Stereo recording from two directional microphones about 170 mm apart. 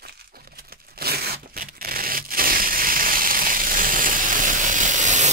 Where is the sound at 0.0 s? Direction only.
65° right (ahead or behind).